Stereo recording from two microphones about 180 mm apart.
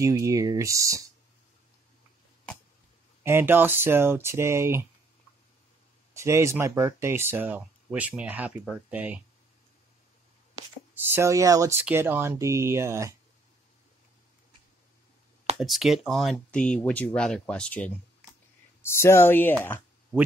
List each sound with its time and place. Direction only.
0.0 s speech: 15° right (ahead or behind)
3.3 s speech: 10° right (ahead or behind)
6.1 s speech: 15° right (ahead or behind)
11.0 s speech: 15° right (ahead or behind)
15.5 s speech: centre (ahead or behind)